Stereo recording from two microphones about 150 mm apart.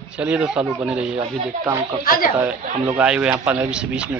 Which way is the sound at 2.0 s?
75° left (ahead or behind).